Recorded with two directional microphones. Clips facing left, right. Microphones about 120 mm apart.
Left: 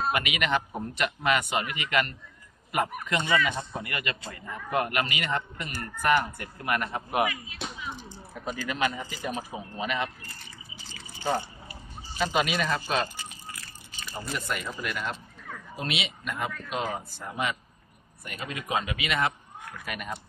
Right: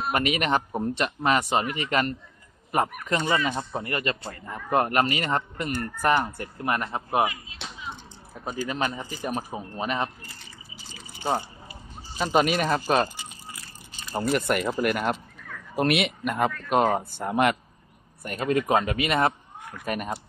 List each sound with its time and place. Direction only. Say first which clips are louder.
0.1 s speech: right 3 dB; 40° right (ahead or behind)
3.3 s speech: right 1 dB; 30° right (ahead or behind)
8.6 s speech: left 1 dB; 35° right (ahead or behind)
12.2 s speech: right 4 dB; 45° right (ahead or behind)
13.1 s a sound: even; 20° right (ahead or behind)
14.1 s speech: right 9 dB; 60° right (ahead or behind)
18.2 s speech: right 12 dB; 45° right (ahead or behind)